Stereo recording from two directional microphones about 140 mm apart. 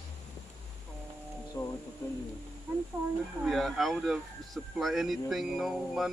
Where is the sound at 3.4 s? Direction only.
Centre (ahead or behind).